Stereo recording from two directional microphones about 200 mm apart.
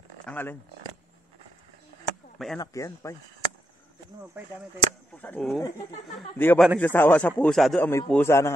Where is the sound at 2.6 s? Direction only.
15° left (ahead or behind).